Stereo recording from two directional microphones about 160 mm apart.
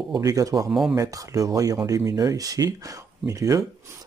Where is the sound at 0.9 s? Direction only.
20° right (ahead or behind).